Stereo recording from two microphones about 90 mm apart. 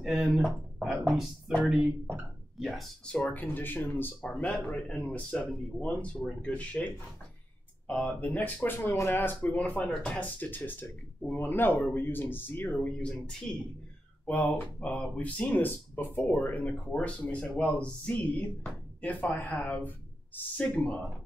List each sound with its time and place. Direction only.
0.0 s speech: 5° right (ahead or behind)
2.6 s speech: centre (ahead or behind)
3.1 s speech: 15° left (ahead or behind)
8.2 s speech: 20° left (ahead or behind)